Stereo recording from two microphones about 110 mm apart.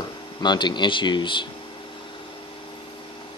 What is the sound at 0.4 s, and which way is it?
Speech, 40° left (ahead or behind).